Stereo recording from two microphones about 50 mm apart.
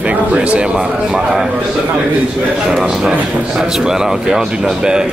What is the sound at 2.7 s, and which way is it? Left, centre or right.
Speech, centre.